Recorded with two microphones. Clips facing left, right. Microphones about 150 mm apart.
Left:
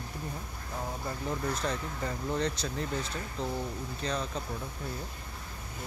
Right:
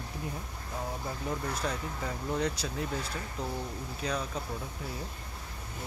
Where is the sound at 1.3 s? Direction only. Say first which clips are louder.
Left 1 dB; 5° right (ahead or behind).